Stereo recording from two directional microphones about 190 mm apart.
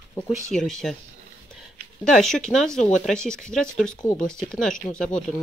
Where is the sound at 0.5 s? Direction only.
Centre (ahead or behind).